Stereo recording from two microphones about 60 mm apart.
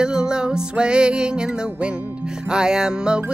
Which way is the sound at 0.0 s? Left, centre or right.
Centre.